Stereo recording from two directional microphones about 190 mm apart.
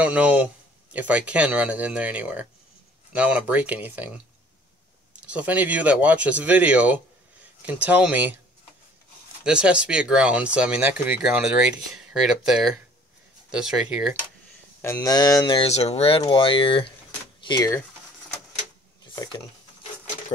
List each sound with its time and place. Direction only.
0.0 s speech: 5° right (ahead or behind)
5.2 s speech: 5° right (ahead or behind)
9.4 s speech: 5° right (ahead or behind)
14.8 s speech: 15° left (ahead or behind)
17.4 s a sound: 25° left (ahead or behind)
19.1 s a sound: 25° left (ahead or behind)